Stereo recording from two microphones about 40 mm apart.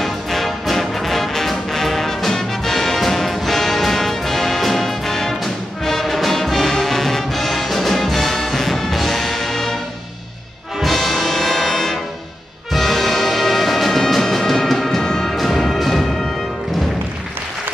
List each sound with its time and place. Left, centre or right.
0.0 s music: centre
10.8 s brass instrument: centre
12.7 s music: centre
15.0 s music: centre
15.2 s music: centre